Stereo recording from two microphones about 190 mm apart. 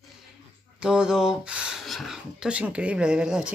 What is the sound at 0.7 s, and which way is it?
Speech, 5° right (ahead or behind).